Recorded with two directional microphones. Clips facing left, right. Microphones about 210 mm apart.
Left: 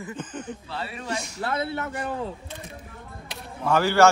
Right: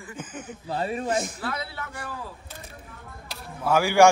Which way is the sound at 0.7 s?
45° right (ahead or behind).